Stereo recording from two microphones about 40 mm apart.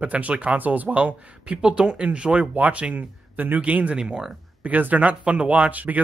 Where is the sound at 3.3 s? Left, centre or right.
Right.